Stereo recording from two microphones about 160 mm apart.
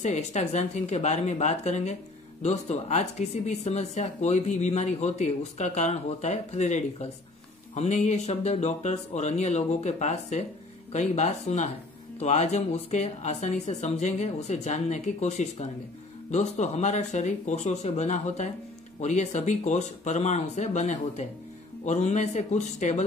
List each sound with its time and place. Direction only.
0.0 s speech: 45° left (ahead or behind)